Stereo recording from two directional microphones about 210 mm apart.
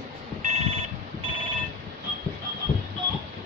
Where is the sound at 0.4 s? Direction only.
35° right (ahead or behind).